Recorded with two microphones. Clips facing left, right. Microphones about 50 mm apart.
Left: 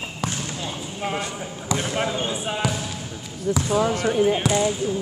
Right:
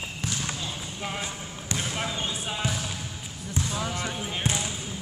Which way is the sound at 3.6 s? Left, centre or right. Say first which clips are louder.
Left 9 dB; left.